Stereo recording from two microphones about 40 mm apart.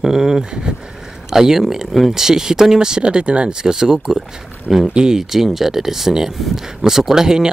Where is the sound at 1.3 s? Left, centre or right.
Centre.